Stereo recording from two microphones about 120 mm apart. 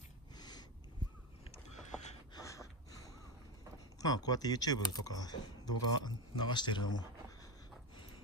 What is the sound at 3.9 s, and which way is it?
Speech, 30° left (ahead or behind).